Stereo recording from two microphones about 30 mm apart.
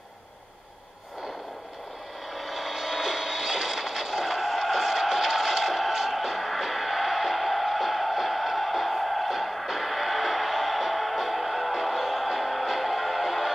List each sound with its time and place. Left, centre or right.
2.3 s vehicle: centre
5.6 s music: centre